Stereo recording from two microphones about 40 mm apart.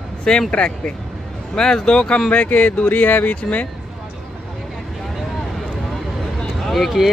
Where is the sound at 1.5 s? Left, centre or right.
Centre.